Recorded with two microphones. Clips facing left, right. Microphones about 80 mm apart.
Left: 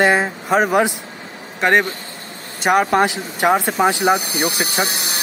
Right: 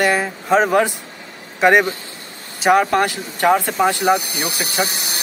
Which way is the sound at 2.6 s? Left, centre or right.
Centre.